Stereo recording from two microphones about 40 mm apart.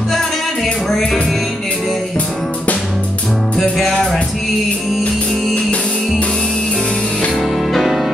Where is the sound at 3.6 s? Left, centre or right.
Centre.